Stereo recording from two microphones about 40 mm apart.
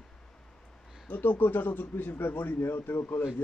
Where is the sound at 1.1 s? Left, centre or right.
Left.